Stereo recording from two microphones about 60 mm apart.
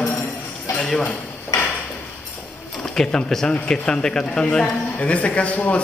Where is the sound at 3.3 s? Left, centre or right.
Centre.